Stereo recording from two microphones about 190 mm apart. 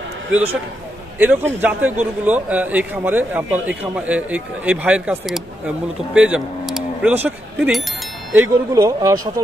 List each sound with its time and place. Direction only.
1.2 s a man's voice: 10° right (ahead or behind)
8.4 s a man's voice: 15° right (ahead or behind)